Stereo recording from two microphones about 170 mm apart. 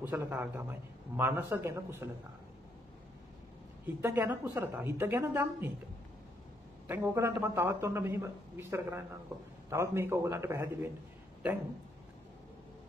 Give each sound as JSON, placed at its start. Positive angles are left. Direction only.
{"t": 0.0, "sound": "a man's voice", "side_deg": -10}
{"t": 3.8, "sound": "a man's voice", "side_deg": -10}
{"t": 6.9, "sound": "a man's voice", "side_deg": -15}